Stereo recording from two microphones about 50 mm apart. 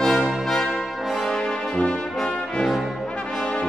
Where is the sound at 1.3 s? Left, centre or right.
Centre.